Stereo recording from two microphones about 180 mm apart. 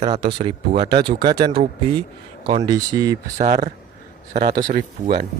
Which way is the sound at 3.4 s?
45° right (ahead or behind).